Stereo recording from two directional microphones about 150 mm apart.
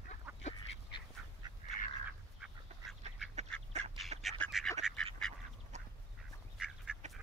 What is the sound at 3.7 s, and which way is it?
Duck, 45° right (ahead or behind).